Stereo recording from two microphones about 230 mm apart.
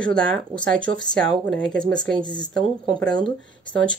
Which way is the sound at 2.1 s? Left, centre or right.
Centre.